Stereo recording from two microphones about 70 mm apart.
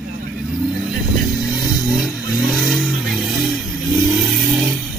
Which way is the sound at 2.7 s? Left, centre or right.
Centre.